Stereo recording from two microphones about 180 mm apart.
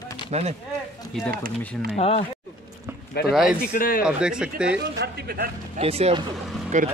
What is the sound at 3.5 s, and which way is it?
Speech, 50° left (ahead or behind).